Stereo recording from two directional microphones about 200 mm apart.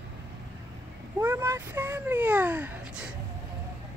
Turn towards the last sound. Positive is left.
turn(degrees=-5)  # may be behind; listen again after turning